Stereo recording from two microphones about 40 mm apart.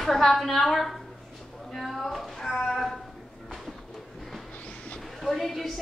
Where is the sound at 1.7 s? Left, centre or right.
Centre.